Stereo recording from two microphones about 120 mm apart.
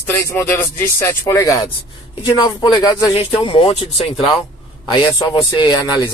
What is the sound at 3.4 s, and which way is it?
Speech, 50° left (ahead or behind).